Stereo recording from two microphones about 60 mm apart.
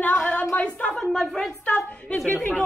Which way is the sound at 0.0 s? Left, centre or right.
Left.